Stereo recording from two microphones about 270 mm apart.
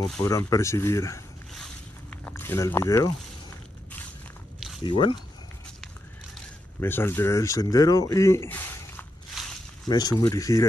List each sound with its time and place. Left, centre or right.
0.1 s speech: centre
1.5 s zipper: centre
4.8 s speech: centre
6.3 s a sound: centre
9.8 s speech: centre